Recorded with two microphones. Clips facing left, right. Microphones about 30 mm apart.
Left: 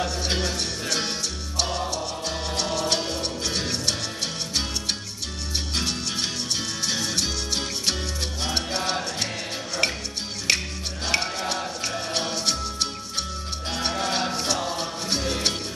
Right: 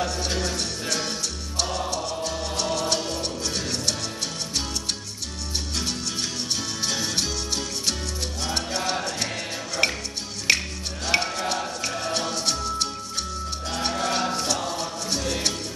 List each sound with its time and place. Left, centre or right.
0.0 s music: centre
2.9 s music: left
7.0 s music: centre
7.2 s music: centre
8.4 s salsa music: left
8.7 s music: centre
12.1 s music: centre
14.8 s music: left